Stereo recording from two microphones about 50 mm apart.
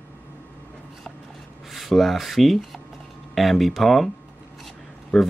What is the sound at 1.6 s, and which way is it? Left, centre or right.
Speech, centre.